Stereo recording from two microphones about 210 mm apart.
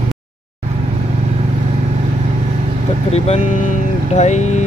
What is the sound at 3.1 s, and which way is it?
Vehicle, 35° left (ahead or behind).